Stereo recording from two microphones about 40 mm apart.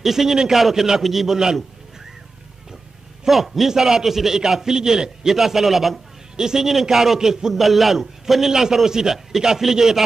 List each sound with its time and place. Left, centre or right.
0.0 s a man's voice: centre
3.3 s a man's voice: centre
6.3 s a man's voice: centre